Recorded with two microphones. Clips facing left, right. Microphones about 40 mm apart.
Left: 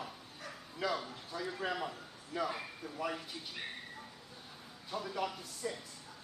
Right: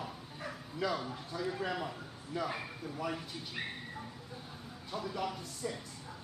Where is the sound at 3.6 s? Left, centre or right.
Right.